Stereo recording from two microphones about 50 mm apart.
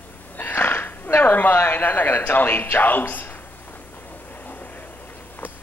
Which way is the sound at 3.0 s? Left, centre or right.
Left.